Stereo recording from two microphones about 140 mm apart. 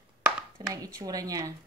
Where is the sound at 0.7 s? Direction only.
25° right (ahead or behind).